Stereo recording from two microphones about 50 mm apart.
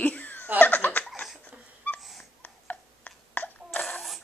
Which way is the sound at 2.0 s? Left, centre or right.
Centre.